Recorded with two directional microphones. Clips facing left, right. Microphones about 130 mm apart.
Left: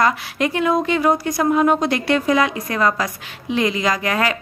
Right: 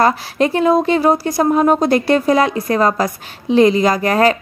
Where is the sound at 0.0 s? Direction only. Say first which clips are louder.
Right 4 dB; 35° right (ahead or behind).